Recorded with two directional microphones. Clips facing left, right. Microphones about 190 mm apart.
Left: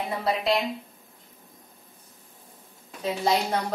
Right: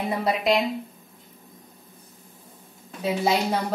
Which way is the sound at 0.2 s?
15° right (ahead or behind).